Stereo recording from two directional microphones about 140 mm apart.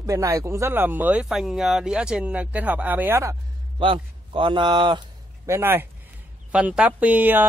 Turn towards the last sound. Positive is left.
turn(degrees=-15)  # may be behind; listen again after turning